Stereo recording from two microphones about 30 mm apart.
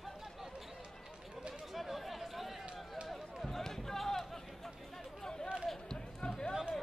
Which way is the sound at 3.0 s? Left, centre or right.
Right.